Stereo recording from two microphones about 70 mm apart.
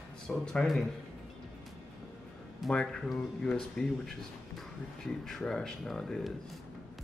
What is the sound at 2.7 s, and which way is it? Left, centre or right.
Speech, centre.